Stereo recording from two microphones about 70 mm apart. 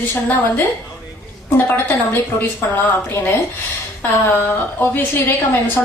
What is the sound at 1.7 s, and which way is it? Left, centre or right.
Speech, left.